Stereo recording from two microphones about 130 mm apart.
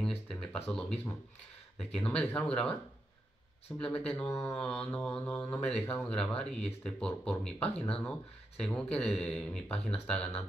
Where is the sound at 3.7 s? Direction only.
10° left (ahead or behind).